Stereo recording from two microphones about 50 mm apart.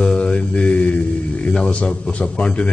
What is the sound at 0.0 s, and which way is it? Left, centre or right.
Mantra, left.